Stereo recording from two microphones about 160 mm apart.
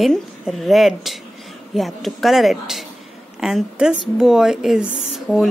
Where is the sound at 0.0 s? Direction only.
Centre (ahead or behind).